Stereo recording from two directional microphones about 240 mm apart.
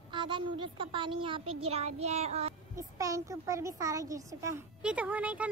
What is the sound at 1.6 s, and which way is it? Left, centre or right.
Child singing, right.